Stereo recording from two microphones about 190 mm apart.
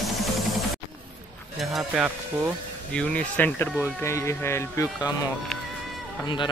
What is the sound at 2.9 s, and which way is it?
Speech, 5° left (ahead or behind).